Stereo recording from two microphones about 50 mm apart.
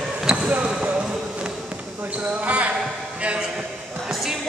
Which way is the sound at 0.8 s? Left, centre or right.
Right.